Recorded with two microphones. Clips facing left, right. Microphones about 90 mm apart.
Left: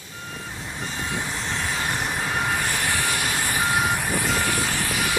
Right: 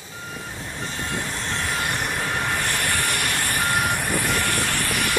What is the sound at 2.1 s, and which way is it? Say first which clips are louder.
Train: even; 15° left (ahead or behind).